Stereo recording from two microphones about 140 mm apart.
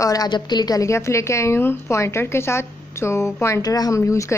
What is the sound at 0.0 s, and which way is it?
A woman's voice, 25° left (ahead or behind).